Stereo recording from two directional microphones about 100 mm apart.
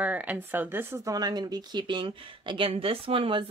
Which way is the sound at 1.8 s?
55° right (ahead or behind).